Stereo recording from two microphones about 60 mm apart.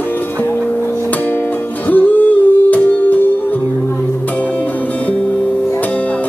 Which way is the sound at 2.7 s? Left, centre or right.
Left.